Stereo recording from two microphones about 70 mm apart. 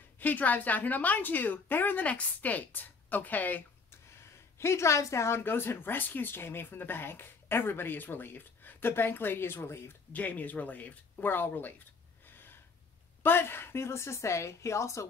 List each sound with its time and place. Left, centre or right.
0.2 s a woman's voice: left
4.6 s speech: left
10.1 s a woman's voice: left
12.3 s gasp: left
13.2 s speech: left